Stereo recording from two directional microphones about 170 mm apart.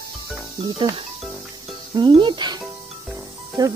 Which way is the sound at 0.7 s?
30° right (ahead or behind).